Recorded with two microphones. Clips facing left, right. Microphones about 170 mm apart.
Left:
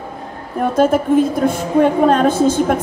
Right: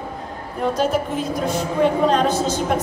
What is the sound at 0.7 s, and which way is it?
A woman's voice, 55° left (ahead or behind).